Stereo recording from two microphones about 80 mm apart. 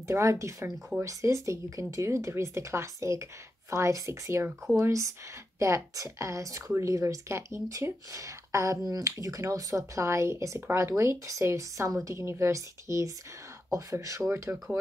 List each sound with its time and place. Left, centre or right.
0.1 s speech: right
14.3 s speech: right